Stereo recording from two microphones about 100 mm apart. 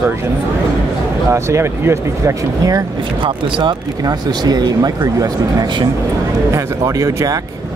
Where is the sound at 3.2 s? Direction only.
50° right (ahead or behind); by 7.4 s 35° right (ahead or behind).